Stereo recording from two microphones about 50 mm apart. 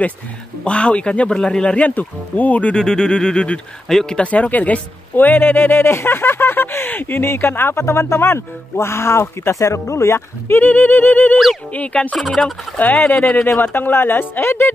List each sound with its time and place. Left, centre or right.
0.7 s speech: left
1.3 s a sound: centre
1.8 s speech: left
2.7 s a sound: centre
4.2 s speech: left
7.7 s speech: left
10.6 s speech: left
11.7 s speech: left